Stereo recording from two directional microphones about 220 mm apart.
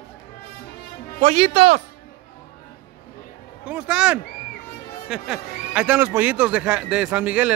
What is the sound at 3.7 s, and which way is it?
A man's voice, 5° right (ahead or behind).